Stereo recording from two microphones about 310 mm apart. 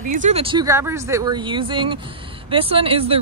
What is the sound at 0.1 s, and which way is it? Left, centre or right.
Speech, right.